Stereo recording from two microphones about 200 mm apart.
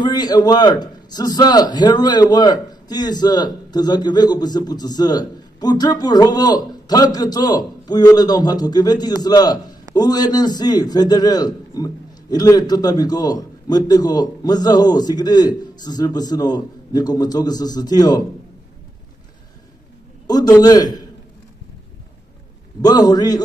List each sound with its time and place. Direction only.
0.0 s a man's voice: 20° left (ahead or behind)
20.2 s a man's voice: 20° left (ahead or behind)
22.8 s a man's voice: 20° left (ahead or behind)